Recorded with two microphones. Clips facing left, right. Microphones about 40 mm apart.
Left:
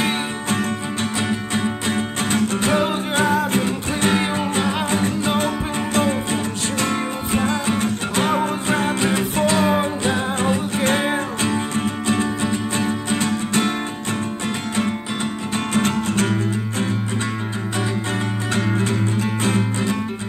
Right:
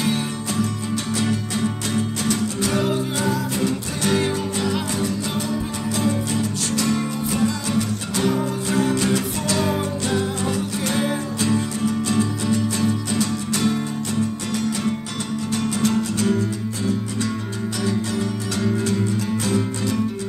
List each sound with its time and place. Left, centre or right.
1.2 s music: left
15.5 s music: left